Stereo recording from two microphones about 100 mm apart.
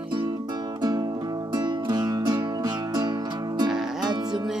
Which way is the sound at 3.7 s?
5° right (ahead or behind).